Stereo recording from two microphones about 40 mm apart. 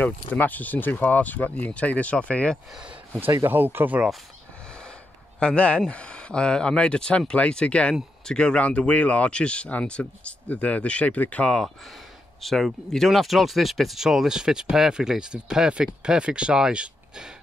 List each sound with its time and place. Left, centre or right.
0.0 s speech: left
3.3 s speech: right
5.4 s speech: left
12.4 s speech: centre
14.0 s speech: centre